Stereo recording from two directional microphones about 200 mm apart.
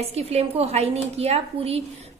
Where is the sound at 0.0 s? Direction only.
30° right (ahead or behind).